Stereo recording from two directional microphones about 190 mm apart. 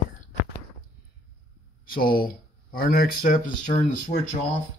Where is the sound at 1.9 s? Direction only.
50° left (ahead or behind).